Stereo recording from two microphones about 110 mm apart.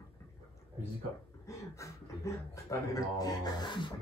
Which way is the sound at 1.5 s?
25° left (ahead or behind).